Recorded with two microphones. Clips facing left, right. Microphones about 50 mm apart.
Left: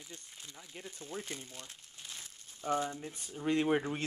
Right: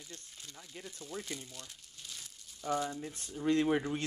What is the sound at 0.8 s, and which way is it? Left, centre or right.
Speech, left.